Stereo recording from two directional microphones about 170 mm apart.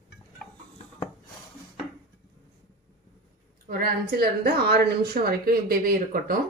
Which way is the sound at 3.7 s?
60° right (ahead or behind).